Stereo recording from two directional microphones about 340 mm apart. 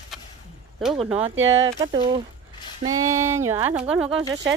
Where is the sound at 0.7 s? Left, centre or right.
Centre.